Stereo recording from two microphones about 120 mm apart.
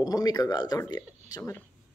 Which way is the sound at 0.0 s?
30° left (ahead or behind).